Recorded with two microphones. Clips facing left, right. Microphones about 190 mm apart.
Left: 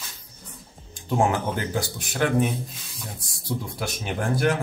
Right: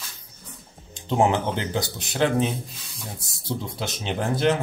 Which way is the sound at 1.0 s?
20° right (ahead or behind).